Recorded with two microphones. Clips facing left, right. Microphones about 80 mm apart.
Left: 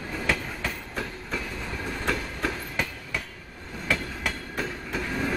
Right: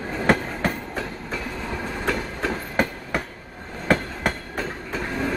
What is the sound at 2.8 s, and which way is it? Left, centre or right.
Train, right.